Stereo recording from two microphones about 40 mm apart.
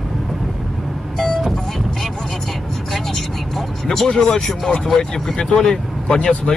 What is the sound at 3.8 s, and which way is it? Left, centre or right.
Speech, centre.